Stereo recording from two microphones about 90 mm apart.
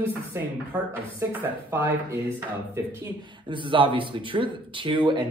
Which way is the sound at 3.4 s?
65° right (ahead or behind).